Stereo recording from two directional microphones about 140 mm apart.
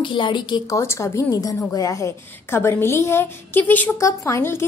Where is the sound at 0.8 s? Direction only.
20° left (ahead or behind).